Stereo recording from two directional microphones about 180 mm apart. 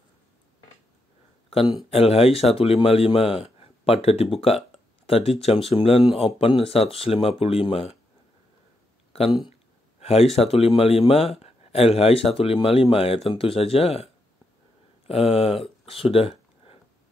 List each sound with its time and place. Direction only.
1.9 s speech: 35° left (ahead or behind)
9.9 s a sound: 35° left (ahead or behind)
10.3 s speech: 35° left (ahead or behind)
15.0 s speech: 30° left (ahead or behind)